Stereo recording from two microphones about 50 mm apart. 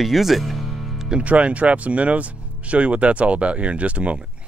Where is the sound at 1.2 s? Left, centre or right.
Right.